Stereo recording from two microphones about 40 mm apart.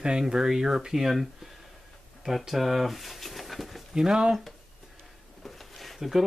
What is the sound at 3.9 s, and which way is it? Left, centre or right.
Speech, centre.